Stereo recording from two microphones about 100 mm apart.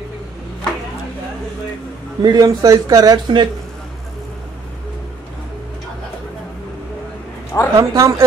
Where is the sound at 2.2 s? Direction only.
40° right (ahead or behind).